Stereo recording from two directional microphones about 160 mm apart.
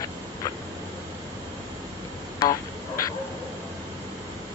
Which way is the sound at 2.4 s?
20° left (ahead or behind).